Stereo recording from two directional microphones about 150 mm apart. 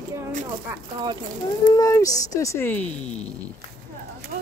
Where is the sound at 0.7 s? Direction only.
20° right (ahead or behind).